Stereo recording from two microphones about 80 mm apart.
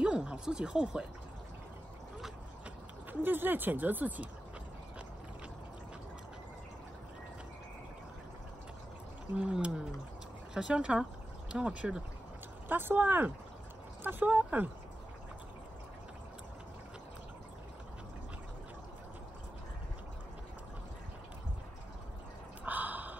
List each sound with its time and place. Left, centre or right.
0.0 s speech: centre
3.1 s speech: right
9.3 s speech: centre
12.6 s speech: right
22.7 s gasp: right